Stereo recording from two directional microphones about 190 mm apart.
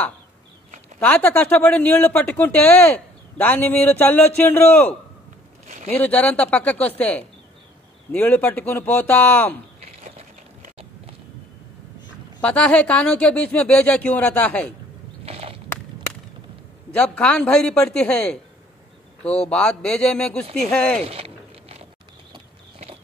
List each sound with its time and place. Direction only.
0.9 s speech: 10° left (ahead or behind)
5.9 s speech: 5° left (ahead or behind)
10.0 s a sound: 35° right (ahead or behind)
12.4 s speech: 5° left (ahead or behind)
15.2 s walk: 30° right (ahead or behind)
16.9 s a man's voice: 5° left (ahead or behind)
19.4 s a man's voice: 5° left (ahead or behind)
21.1 s a sound: 30° right (ahead or behind)